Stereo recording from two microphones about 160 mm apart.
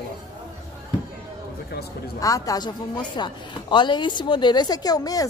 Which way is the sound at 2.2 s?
20° left (ahead or behind).